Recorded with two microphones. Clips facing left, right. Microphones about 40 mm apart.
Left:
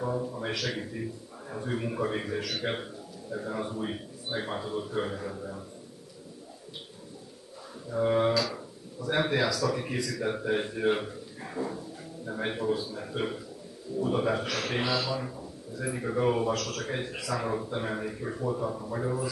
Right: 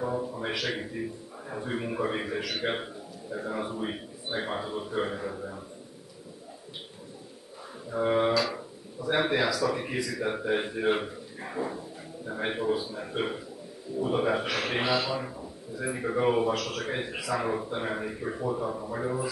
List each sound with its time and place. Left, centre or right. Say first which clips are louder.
0.0 s a man's voice: right 1 dB; centre
7.9 s a man's voice: even; centre